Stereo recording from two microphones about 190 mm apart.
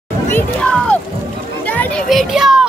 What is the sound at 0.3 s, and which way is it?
Music, 10° left (ahead or behind).